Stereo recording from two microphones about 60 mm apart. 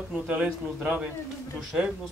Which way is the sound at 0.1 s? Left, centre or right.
Right.